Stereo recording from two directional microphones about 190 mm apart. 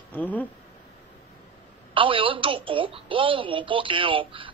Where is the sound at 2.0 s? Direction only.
25° right (ahead or behind).